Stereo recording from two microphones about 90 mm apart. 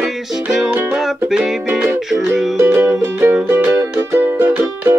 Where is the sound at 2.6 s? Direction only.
30° right (ahead or behind).